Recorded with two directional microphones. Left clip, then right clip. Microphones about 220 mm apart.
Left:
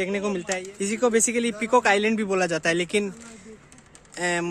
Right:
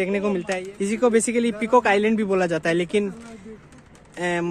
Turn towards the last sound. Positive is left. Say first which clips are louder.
# right 1 dB
turn(degrees=15)  # may be behind; listen again after turning